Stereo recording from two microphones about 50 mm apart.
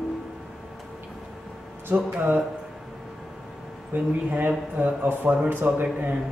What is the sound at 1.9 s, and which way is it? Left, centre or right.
Speech, right.